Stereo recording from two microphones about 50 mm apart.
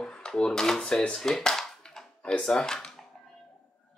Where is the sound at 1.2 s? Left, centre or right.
Centre.